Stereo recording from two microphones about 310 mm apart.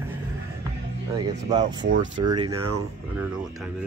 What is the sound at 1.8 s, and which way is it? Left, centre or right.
Speech, right.